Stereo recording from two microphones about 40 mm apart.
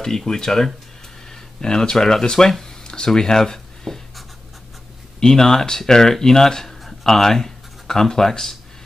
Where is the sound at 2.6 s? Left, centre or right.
Left.